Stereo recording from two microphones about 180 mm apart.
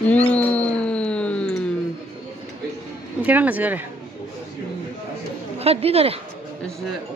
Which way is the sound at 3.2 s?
10° right (ahead or behind).